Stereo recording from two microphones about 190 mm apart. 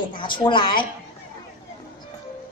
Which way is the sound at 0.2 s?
25° left (ahead or behind).